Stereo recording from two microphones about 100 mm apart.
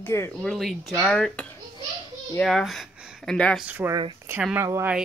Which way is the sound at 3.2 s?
10° left (ahead or behind).